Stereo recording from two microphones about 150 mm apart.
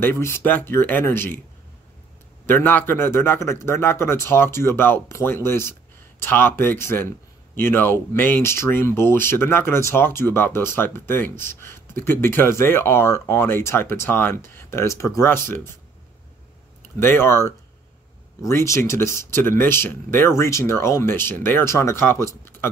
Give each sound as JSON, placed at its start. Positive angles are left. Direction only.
{"t": 0.0, "sound": "speech", "side_deg": 15}
{"t": 2.4, "sound": "speech", "side_deg": 15}
{"t": 17.0, "sound": "speech", "side_deg": 15}